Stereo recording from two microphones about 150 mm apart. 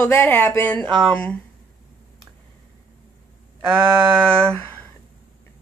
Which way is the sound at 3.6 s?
15° right (ahead or behind).